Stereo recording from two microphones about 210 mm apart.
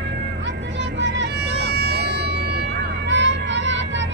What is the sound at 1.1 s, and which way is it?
Vehicle, 55° right (ahead or behind).